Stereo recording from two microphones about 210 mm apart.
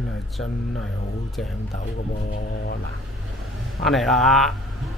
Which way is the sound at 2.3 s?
55° left (ahead or behind).